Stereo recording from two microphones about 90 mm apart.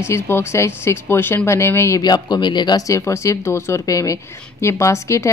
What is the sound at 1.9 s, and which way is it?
Speech, 50° left (ahead or behind).